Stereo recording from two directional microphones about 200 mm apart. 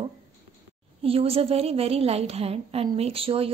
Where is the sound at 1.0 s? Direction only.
30° right (ahead or behind).